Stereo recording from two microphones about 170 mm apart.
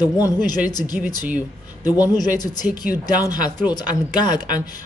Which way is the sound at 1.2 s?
10° right (ahead or behind).